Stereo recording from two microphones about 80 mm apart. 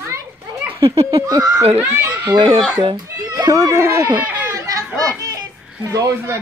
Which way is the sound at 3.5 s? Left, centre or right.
Right.